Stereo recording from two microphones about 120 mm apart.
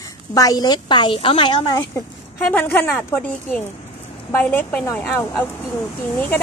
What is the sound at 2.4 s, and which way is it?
Speech, 15° left (ahead or behind).